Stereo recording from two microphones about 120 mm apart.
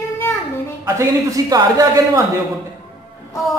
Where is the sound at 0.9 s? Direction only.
30° right (ahead or behind).